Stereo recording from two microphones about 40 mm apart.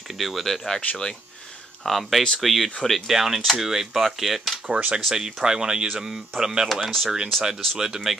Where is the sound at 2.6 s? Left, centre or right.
Centre.